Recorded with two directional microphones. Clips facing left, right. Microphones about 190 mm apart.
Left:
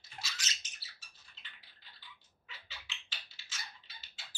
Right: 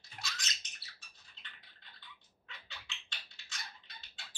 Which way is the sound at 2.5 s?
5° left (ahead or behind).